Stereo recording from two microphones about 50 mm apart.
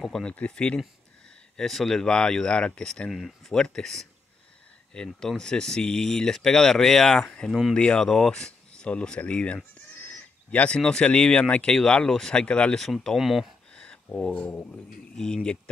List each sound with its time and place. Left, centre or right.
0.2 s speech: left
1.6 s speech: centre
3.1 s speech: centre
7.7 s speech: left
8.0 s speech: centre
9.9 s a sound: left
10.8 s speech: centre
12.8 s speech: centre
13.7 s a sound: left
14.4 s speech: left
14.7 s speech: centre